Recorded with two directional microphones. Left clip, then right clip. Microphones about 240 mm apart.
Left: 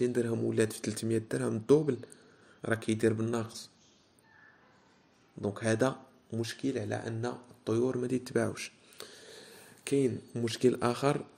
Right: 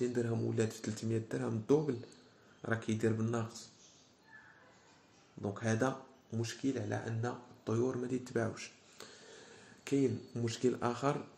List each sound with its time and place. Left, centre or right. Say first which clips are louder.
0.0 s speech: left 5 dB; left
5.4 s speech: left 5 dB; left